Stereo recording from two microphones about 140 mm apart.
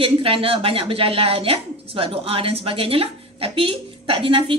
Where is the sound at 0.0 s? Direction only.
40° right (ahead or behind).